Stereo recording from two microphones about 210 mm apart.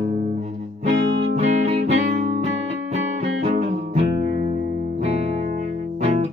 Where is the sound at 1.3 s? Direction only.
30° right (ahead or behind).